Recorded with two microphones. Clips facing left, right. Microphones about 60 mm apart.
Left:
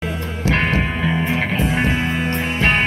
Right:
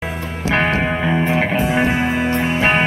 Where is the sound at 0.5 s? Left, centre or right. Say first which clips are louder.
Right 2 dB; right.